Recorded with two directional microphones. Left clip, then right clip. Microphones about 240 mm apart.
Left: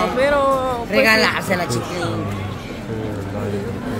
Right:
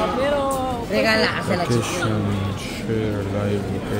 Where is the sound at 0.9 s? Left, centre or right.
Left.